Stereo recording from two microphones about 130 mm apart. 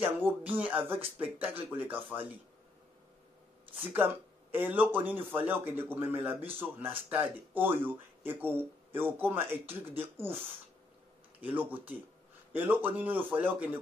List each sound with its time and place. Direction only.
0.0 s speech: 15° right (ahead or behind)
3.9 s speech: 15° right (ahead or behind)
11.4 s speech: 15° right (ahead or behind)